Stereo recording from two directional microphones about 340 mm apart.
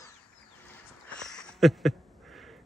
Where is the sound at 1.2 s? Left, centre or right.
Centre.